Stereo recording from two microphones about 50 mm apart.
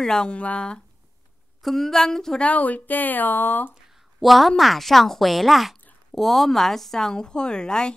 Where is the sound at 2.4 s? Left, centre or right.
Left.